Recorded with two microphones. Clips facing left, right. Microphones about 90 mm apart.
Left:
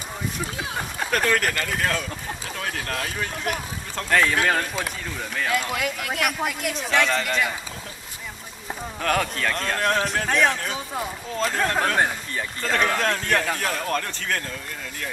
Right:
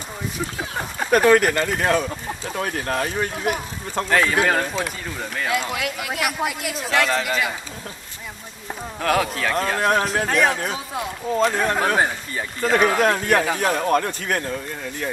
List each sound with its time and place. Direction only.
0.7 s speech: 10° right (ahead or behind)
3.4 s a man's voice: 10° right (ahead or behind)
9.0 s a man's voice: 5° right (ahead or behind)